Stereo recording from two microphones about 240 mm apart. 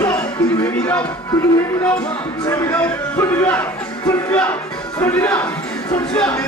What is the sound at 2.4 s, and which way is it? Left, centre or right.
Speech, centre.